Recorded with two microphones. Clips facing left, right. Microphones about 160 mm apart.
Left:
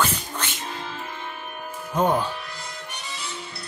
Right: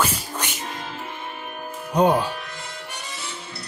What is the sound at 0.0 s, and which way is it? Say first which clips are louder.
Music: right 1 dB; 5° right (ahead or behind).